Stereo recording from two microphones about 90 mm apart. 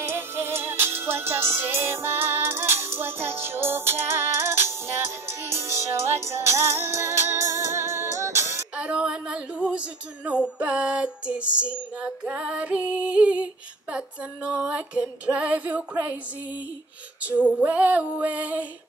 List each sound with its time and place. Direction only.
0.0 s music: 25° right (ahead or behind)
8.7 s a woman's voice: 10° right (ahead or behind)
17.2 s female singing: 15° right (ahead or behind)